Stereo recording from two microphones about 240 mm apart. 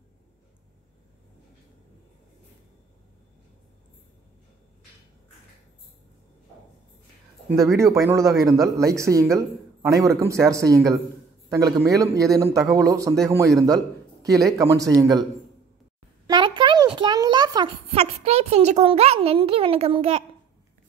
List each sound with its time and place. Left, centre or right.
7.7 s a man's voice: centre
16.3 s a child's voice: centre